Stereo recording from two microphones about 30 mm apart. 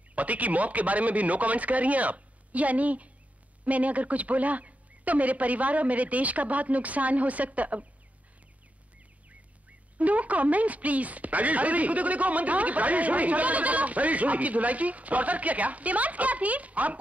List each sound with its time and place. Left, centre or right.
0.1 s speech: right
9.3 s speech: right